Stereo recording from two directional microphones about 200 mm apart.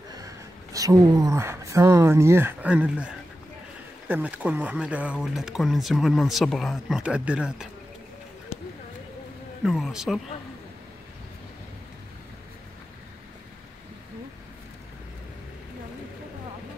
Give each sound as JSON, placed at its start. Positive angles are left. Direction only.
{"t": 0.7, "sound": "speech", "side_deg": -20}
{"t": 8.5, "sound": "a sound", "side_deg": 30}
{"t": 9.7, "sound": "speech", "side_deg": 0}